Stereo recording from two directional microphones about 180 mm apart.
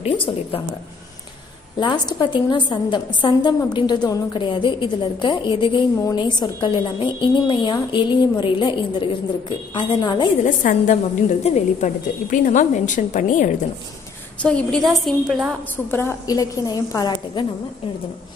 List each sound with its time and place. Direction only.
0.0 s a woman's voice: 30° left (ahead or behind)
1.8 s a woman's voice: 25° left (ahead or behind)
10.4 s a woman's voice: 45° left (ahead or behind)
14.4 s a woman's voice: 5° left (ahead or behind)
15.7 s a woman's voice: 15° left (ahead or behind)